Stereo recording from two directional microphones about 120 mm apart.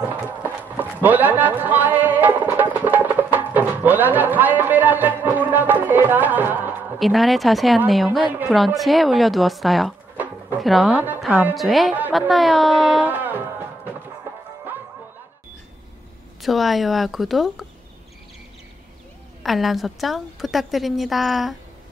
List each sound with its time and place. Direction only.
0.4 s speech: 15° right (ahead or behind)
7.0 s a woman's voice: centre (ahead or behind)
13.1 s music: 15° right (ahead or behind)
16.3 s a woman's voice: centre (ahead or behind)
19.4 s a woman's voice: centre (ahead or behind)